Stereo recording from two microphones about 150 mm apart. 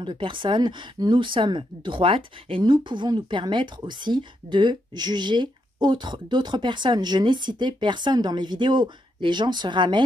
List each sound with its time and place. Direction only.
0.0 s speech: 35° right (ahead or behind)